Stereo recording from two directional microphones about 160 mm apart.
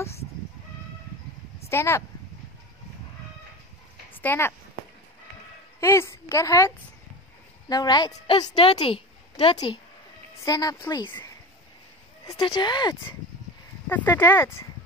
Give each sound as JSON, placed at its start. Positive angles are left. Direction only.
{"t": 1.7, "sound": "a woman's voice", "side_deg": 15}
{"t": 4.1, "sound": "speech", "side_deg": 10}
{"t": 5.8, "sound": "a woman's voice", "side_deg": 15}
{"t": 7.7, "sound": "a woman's voice", "side_deg": 25}
{"t": 11.1, "sound": "speech", "side_deg": 10}
{"t": 12.4, "sound": "a woman's voice", "side_deg": 30}
{"t": 13.8, "sound": "a woman's voice", "side_deg": 10}